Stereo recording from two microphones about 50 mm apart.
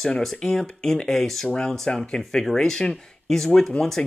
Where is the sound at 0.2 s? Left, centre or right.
Centre.